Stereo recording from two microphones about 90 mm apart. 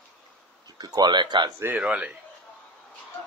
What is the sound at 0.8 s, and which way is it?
Speech, 50° right (ahead or behind).